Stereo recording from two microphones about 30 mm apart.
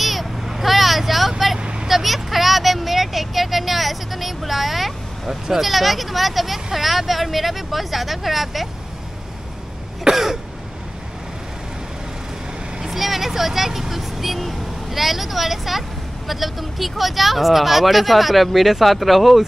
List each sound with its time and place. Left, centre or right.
0.0 s vehicle: centre
1.6 s vehicle: right
1.9 s vehicle: centre
10.1 s throat clearing: centre
12.8 s speech: centre